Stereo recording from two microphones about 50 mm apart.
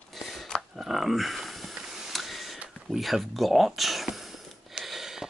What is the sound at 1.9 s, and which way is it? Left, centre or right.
Printer, centre.